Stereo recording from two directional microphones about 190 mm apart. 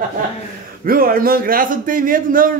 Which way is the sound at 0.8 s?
50° right (ahead or behind).